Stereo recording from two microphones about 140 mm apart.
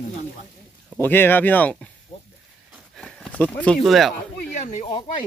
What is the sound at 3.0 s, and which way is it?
Speech, 10° left (ahead or behind).